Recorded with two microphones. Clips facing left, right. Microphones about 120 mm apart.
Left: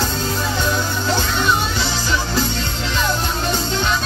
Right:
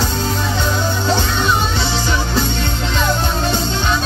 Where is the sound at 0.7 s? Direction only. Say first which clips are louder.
Right 4 dB; 25° right (ahead or behind).